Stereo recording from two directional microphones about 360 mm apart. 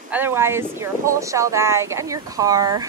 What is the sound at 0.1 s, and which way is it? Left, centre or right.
Speech, centre.